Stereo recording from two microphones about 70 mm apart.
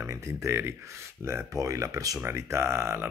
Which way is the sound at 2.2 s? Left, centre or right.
Right.